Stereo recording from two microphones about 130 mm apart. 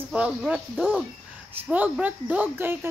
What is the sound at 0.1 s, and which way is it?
Speech, 5° right (ahead or behind).